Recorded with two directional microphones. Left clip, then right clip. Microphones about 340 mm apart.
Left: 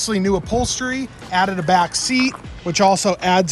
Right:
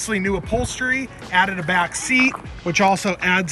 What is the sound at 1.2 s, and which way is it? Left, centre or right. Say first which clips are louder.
Speech: left 2 dB; centre.